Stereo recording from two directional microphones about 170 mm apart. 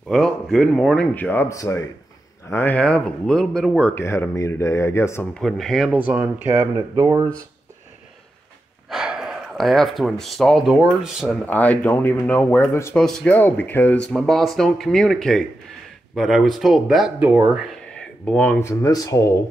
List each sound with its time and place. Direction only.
0.1 s speech: centre (ahead or behind)
3.9 s speech: 15° left (ahead or behind)
5.4 s speech: centre (ahead or behind)
5.9 s speech: 10° right (ahead or behind)
7.0 s speech: 25° right (ahead or behind)
8.9 s speech: 5° right (ahead or behind)
11.4 s speech: 10° left (ahead or behind); by 17.6 s 10° right (ahead or behind)
17.6 s speech: 5° left (ahead or behind)